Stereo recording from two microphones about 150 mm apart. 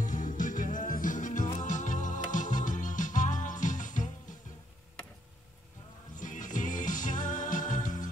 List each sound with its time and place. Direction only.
0.0 s music: 60° left (ahead or behind)
6.1 s music: 60° left (ahead or behind)